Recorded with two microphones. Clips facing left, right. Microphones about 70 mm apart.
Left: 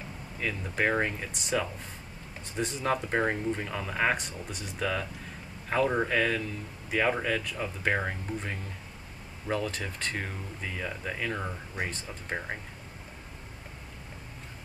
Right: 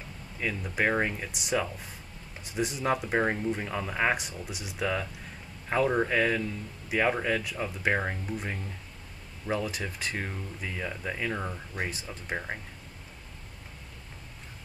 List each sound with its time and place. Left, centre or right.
0.4 s speech: centre
11.8 s speech: centre
12.3 s speech: centre